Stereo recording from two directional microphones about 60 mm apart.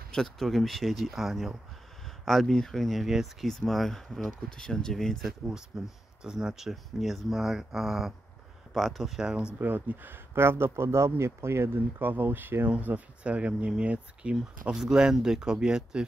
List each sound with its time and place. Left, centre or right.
0.1 s speech: centre
5.7 s speech: centre
9.6 s speech: right
12.7 s speech: right